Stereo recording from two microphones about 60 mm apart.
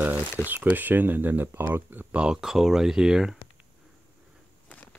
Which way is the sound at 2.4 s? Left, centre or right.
Centre.